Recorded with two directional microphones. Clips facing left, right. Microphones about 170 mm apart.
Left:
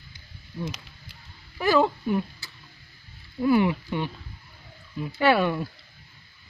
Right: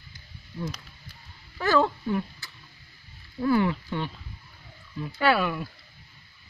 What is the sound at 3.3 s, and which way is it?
Speech, 15° left (ahead or behind).